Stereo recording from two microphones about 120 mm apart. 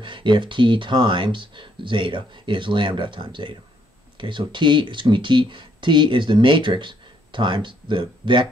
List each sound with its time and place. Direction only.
0.0 s speech: 40° right (ahead or behind)